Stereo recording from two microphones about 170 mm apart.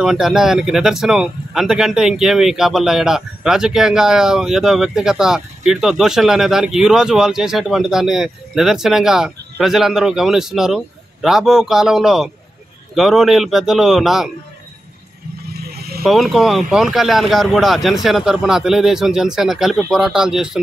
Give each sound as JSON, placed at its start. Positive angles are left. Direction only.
{"t": 0.0, "sound": "speech", "side_deg": -5}
{"t": 15.7, "sound": "vehicle", "side_deg": -65}
{"t": 16.0, "sound": "speech", "side_deg": 0}